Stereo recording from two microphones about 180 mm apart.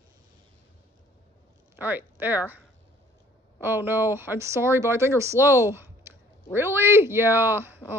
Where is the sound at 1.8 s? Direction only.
10° right (ahead or behind).